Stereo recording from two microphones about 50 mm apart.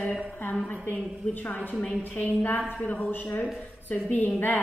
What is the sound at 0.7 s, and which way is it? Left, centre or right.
A woman's voice, left.